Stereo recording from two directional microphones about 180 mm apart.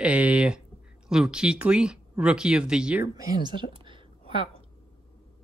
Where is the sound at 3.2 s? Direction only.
25° right (ahead or behind).